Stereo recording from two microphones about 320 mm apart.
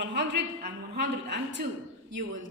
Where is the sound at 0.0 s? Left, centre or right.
Right.